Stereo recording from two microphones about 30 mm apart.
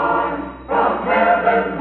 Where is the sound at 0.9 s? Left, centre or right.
Left.